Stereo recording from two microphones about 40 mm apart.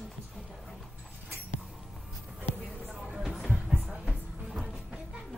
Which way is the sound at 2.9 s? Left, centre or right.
Centre.